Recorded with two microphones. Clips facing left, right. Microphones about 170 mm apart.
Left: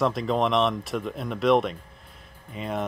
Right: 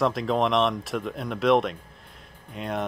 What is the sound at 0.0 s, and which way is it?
Speech, centre (ahead or behind).